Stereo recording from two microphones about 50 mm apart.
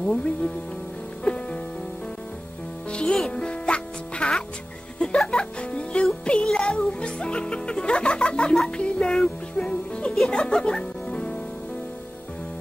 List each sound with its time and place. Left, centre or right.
0.0 s speech: centre
1.2 s music: centre
2.9 s music: centre